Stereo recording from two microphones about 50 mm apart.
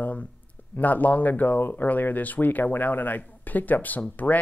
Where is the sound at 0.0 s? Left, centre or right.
Left.